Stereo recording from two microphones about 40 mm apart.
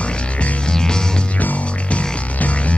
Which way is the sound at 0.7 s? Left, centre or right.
Centre.